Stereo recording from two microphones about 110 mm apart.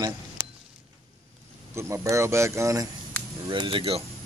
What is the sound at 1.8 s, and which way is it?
Speech, 25° right (ahead or behind).